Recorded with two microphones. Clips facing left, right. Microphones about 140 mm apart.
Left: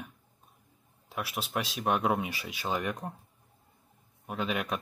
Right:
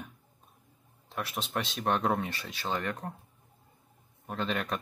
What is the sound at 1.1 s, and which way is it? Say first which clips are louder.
Speech: even; 5° left (ahead or behind).